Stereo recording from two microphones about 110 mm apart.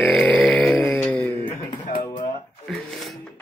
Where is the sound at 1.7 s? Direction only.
50° left (ahead or behind).